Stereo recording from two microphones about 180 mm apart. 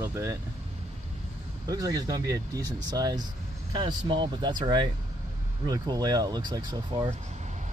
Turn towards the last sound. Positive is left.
turn(degrees=-25)  # may be behind; listen again after turning